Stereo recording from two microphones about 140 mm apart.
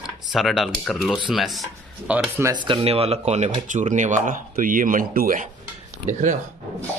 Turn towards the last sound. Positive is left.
turn(degrees=-60)  # may be behind; listen again after turning